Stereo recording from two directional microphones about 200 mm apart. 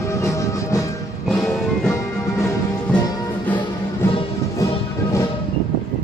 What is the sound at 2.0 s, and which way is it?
Music, 15° left (ahead or behind).